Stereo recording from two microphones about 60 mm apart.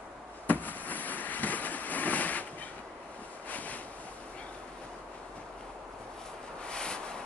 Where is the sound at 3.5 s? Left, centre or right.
Left.